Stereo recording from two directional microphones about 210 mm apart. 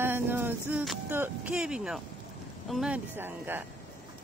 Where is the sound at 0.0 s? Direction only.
10° right (ahead or behind).